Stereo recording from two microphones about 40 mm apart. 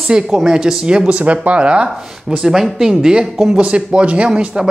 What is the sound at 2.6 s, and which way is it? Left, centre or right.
Speech, centre.